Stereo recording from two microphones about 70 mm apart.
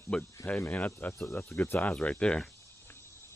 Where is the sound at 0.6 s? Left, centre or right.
Left.